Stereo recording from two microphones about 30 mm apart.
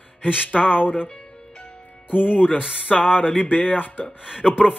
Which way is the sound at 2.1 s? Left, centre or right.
Left.